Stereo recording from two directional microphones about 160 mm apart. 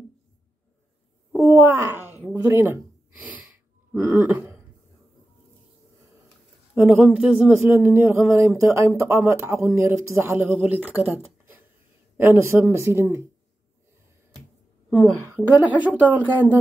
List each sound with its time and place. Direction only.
1.3 s wail: 20° right (ahead or behind)
2.3 s speech: 15° right (ahead or behind)
6.7 s speech: 5° right (ahead or behind)
14.9 s a woman's voice: 5° right (ahead or behind)
15.9 s speech: 10° left (ahead or behind)